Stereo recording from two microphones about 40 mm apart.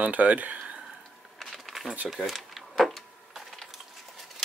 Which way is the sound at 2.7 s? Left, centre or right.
Centre.